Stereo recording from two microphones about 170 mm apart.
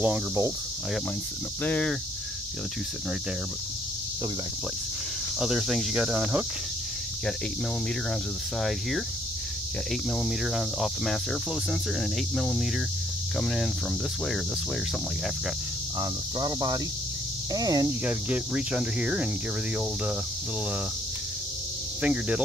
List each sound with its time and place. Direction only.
0.0 s speech: 10° right (ahead or behind)
1.6 s speech: 5° left (ahead or behind)
5.4 s speech: 5° right (ahead or behind)
8.5 s speech: centre (ahead or behind)
10.1 s speech: centre (ahead or behind)
12.4 s speech: centre (ahead or behind)
16.0 s speech: 25° right (ahead or behind)
17.8 s speech: 10° right (ahead or behind)
22.0 s speech: 5° right (ahead or behind)